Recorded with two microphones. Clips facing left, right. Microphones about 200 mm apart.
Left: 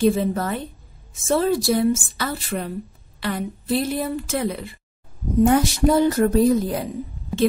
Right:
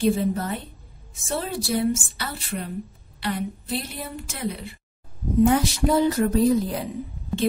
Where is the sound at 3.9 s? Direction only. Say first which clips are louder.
Left 11 dB; 90° left.